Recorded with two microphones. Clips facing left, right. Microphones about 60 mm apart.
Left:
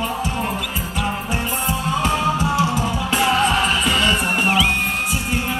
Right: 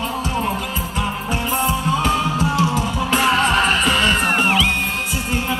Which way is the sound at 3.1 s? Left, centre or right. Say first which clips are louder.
Right 1 dB; right.